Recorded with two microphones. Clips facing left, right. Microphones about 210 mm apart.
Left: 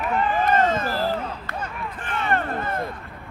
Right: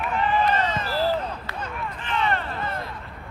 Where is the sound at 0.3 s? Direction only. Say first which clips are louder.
Left 3 dB; 50° left (ahead or behind).